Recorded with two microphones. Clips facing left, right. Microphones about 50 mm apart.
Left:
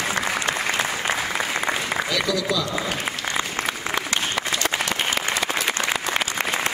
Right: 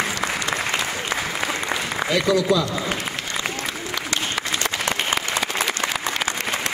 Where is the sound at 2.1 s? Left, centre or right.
Right.